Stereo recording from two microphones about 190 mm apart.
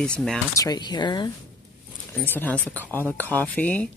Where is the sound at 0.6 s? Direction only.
20° left (ahead or behind).